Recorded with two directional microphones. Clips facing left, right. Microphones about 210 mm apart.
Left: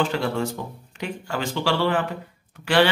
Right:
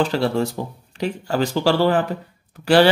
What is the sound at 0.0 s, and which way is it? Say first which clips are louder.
Speech: right 4 dB; 35° right (ahead or behind).